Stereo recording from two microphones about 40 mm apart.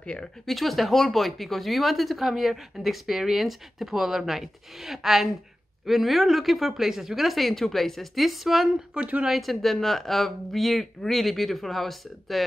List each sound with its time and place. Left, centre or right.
0.0 s speech: left
0.5 s speech: centre
8.9 s speech: right
9.3 s speech: centre